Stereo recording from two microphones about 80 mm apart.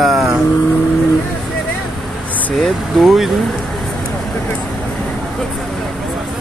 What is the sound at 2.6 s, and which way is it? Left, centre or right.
Speech, centre.